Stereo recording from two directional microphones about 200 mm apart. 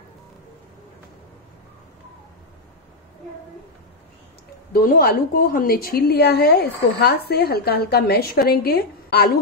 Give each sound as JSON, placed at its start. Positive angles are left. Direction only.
{"t": 4.7, "sound": "a woman's voice", "side_deg": 45}